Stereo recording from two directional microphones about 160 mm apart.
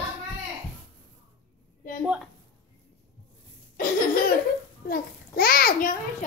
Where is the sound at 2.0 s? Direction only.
5° right (ahead or behind).